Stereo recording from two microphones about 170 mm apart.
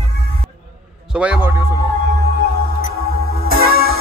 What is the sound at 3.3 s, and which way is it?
Music, 60° right (ahead or behind).